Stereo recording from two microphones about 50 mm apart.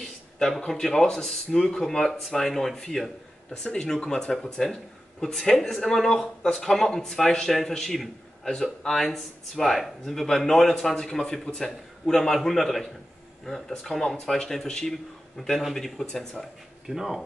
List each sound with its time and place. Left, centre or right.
0.6 s speech: centre
3.5 s a man's voice: centre
16.8 s a man's voice: centre